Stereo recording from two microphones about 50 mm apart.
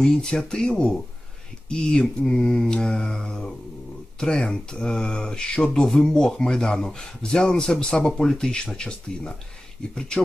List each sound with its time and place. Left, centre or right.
0.0 s speech: centre
5.7 s speech: centre